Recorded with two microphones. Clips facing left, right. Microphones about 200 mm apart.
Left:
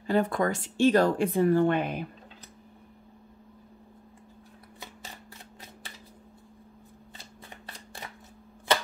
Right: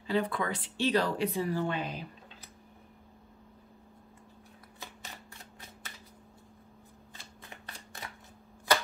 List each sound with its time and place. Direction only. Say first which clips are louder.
0.0 s speech: left 5 dB; 45° left (ahead or behind)